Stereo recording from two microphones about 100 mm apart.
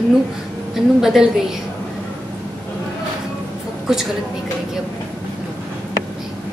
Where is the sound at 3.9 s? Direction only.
5° right (ahead or behind).